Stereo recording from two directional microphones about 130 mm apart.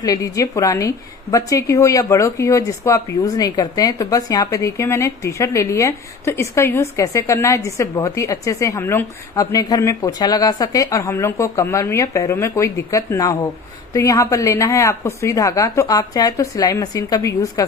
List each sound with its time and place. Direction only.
0.0 s a woman's voice: 25° left (ahead or behind)